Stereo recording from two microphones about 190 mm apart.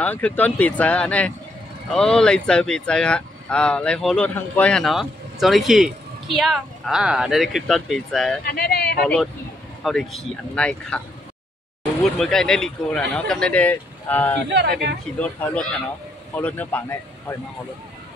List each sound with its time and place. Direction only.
0.0 s speech: 10° left (ahead or behind)
8.5 s speech: 55° left (ahead or behind)
9.0 s speech: centre (ahead or behind)
12.2 s speech: 5° left (ahead or behind)
14.5 s speech: 60° right (ahead or behind)
15.1 s speech: 5° left (ahead or behind)